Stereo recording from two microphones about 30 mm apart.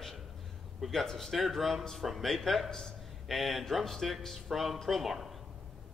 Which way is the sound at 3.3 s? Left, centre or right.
Centre.